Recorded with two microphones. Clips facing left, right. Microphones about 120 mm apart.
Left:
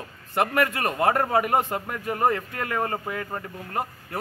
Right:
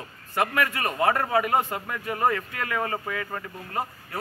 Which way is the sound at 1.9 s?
35° left (ahead or behind).